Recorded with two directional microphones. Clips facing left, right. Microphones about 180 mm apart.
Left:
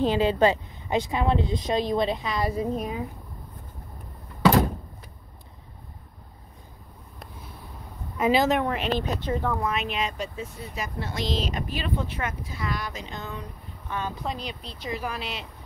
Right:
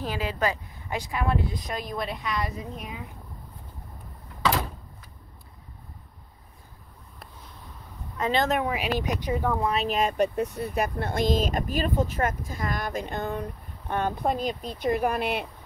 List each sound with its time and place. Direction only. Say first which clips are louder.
0.0 s speech: left 7 dB; 25° left (ahead or behind)
8.2 s speech: left 3 dB; 5° left (ahead or behind); by 9.6 s 10° right (ahead or behind)
9.7 s speech: right 3 dB; 40° right (ahead or behind); by 15.4 s 55° right (ahead or behind)